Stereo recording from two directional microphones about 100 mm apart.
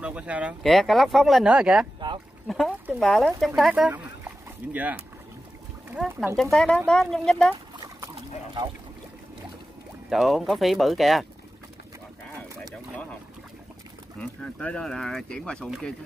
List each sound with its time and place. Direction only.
0.0 s speech: 15° right (ahead or behind)
0.6 s speech: centre (ahead or behind); by 5.0 s 15° right (ahead or behind)
6.0 s speech: 15° right (ahead or behind)
6.3 s speech: 5° left (ahead or behind)
10.0 s speech: centre (ahead or behind)
14.4 s speech: 10° left (ahead or behind)